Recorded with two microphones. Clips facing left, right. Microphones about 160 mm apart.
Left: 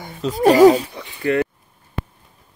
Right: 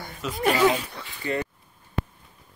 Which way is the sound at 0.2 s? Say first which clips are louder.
Left 11 dB; 40° left (ahead or behind).